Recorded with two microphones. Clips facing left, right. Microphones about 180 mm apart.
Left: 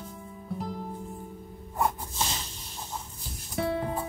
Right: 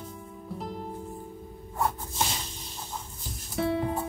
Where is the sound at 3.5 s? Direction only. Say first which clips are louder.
Right 2 dB; centre (ahead or behind).